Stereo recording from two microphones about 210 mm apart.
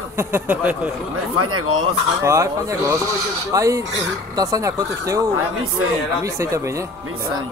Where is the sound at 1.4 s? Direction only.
90° right.